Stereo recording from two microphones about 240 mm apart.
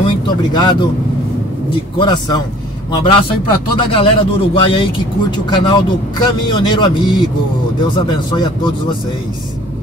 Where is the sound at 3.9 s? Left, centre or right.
Left.